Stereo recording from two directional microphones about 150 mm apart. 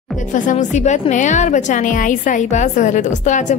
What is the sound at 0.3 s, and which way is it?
A woman's voice, 55° left (ahead or behind).